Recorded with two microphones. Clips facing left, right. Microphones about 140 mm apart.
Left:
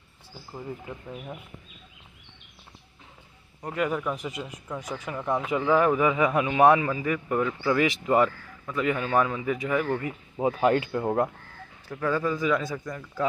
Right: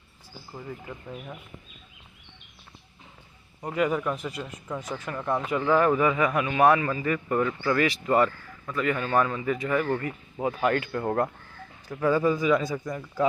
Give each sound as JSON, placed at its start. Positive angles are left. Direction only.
{"t": 0.5, "sound": "speech", "side_deg": 15}
{"t": 3.6, "sound": "a man's voice", "side_deg": 0}
{"t": 4.2, "sound": "speech", "side_deg": 15}
{"t": 6.9, "sound": "speech", "side_deg": 10}
{"t": 10.6, "sound": "speech", "side_deg": 25}
{"t": 11.0, "sound": "speech", "side_deg": 10}
{"t": 11.9, "sound": "speech", "side_deg": -10}